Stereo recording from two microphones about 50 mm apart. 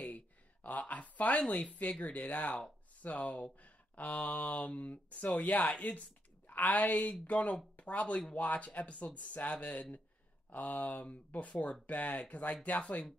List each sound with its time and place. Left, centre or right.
0.7 s speech: left